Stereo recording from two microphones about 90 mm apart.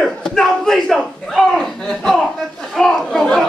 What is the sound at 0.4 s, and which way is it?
A man's voice, 5° left (ahead or behind).